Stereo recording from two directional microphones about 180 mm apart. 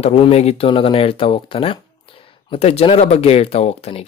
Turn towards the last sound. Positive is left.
turn(degrees=35)  # may be behind; listen again after turning